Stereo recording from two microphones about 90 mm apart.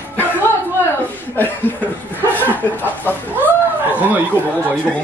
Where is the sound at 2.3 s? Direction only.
20° left (ahead or behind).